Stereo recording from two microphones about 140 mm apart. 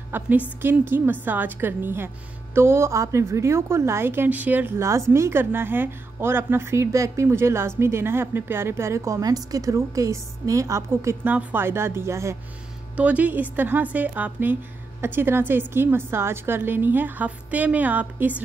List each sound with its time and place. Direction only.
0.1 s a woman's voice: 15° right (ahead or behind)